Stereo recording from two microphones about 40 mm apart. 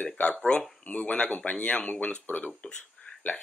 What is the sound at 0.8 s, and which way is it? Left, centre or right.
Speech, left.